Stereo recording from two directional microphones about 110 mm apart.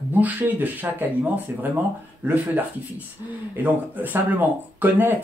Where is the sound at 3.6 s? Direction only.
15° right (ahead or behind).